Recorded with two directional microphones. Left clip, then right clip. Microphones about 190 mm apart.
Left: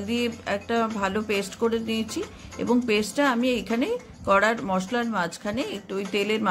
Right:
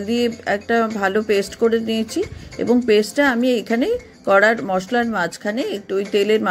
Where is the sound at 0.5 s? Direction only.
25° right (ahead or behind).